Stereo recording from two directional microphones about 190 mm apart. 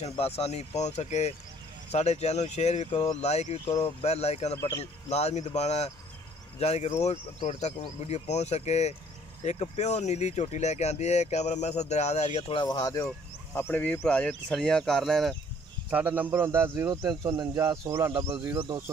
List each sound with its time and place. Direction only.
0.0 s speech: 35° left (ahead or behind)
13.6 s speech: 10° left (ahead or behind); by 18.6 s 15° right (ahead or behind)